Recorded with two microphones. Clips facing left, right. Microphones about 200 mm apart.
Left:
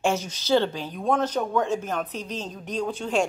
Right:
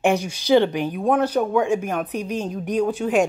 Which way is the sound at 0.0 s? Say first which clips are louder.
Right 5 dB; 15° right (ahead or behind).